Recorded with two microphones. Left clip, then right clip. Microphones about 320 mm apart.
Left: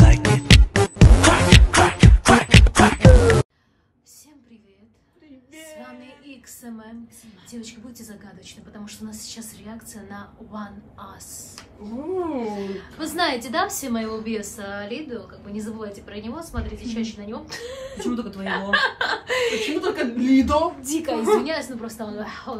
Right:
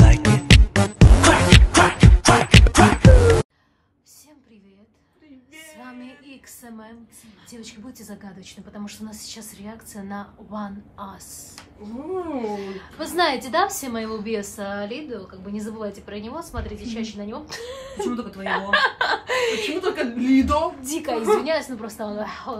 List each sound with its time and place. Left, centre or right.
0.0 s music: centre
5.8 s a sound: right
7.6 s a woman's voice: right
12.4 s a woman's voice: right
19.8 s speech: centre
20.8 s a woman's voice: right